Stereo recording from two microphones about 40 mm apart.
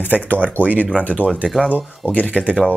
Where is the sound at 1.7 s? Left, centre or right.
Left.